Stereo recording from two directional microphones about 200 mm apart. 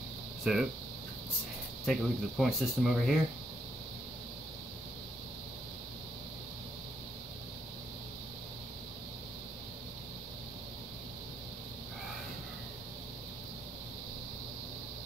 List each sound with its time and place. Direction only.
0.4 s speech: 5° right (ahead or behind)
1.9 s speech: centre (ahead or behind)